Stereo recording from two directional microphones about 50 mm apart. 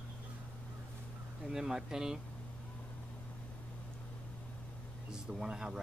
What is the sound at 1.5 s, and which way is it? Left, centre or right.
Speech, centre.